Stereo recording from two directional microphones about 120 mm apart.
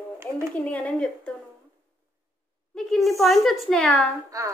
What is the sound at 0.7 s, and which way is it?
Speech, 10° left (ahead or behind).